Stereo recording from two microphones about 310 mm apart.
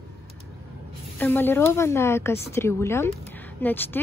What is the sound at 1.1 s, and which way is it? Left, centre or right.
A woman's voice, centre.